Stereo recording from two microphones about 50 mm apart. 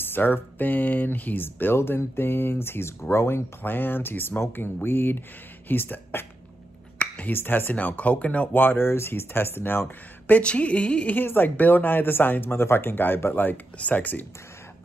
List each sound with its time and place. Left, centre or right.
0.0 s speech: left
3.0 s speech: left
3.6 s speech: left
7.2 s speech: left
7.7 s speech: left
8.5 s speech: left
10.4 s speech: left
11.1 s speech: left